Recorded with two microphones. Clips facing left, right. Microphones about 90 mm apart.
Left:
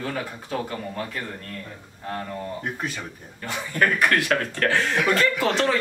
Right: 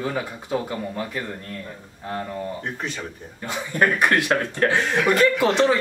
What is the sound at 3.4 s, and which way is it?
Speech, 20° right (ahead or behind).